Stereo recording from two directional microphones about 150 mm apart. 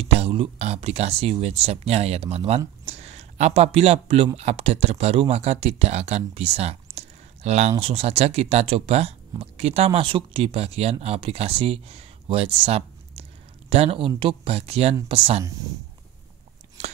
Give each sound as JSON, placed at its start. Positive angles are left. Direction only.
{"t": 0.0, "sound": "speech", "side_deg": -40}